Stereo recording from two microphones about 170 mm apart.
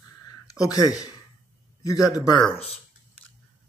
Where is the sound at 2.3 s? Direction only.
5° left (ahead or behind).